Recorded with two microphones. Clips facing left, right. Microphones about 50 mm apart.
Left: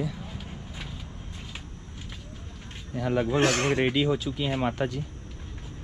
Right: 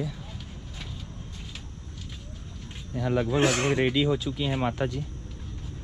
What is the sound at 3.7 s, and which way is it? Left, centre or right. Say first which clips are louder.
Speech: even; left.